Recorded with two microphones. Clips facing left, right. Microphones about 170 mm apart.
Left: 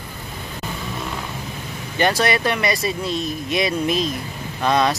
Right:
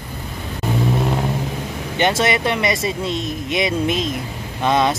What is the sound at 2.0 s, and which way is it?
A man's voice, 20° right (ahead or behind).